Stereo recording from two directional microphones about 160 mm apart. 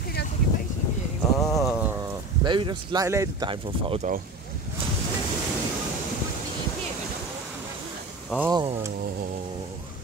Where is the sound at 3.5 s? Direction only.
35° right (ahead or behind).